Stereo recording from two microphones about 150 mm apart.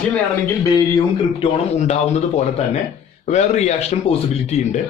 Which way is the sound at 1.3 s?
40° left (ahead or behind).